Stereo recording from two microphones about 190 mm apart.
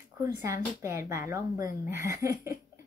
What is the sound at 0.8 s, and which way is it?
Speech, 15° right (ahead or behind).